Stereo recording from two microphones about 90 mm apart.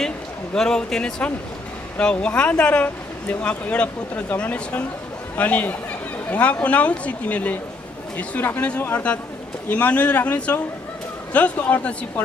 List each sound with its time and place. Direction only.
0.6 s speech: 10° left (ahead or behind)